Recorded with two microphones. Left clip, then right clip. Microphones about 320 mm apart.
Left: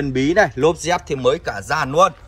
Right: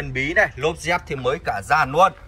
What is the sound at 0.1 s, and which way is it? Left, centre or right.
A man's voice, centre.